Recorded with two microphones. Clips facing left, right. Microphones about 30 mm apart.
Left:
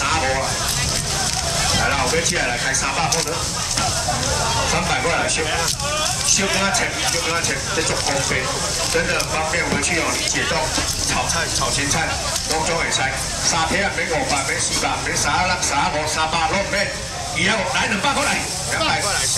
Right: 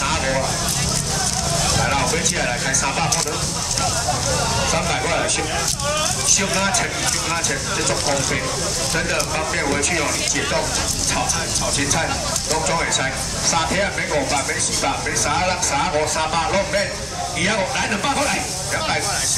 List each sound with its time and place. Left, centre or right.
0.0 s vehicle: centre
2.1 s speech: centre
4.7 s speech: centre
6.3 s speech: centre
12.6 s speech: centre